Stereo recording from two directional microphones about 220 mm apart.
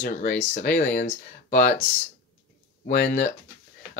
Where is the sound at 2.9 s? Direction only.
40° left (ahead or behind).